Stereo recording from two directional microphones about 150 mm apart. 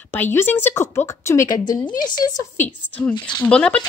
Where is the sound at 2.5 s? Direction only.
10° left (ahead or behind).